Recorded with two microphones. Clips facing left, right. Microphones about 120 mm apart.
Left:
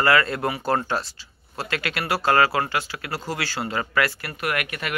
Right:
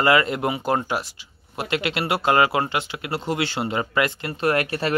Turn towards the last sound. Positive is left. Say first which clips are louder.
# right 6 dB
turn(degrees=-30)  # may be behind; listen again after turning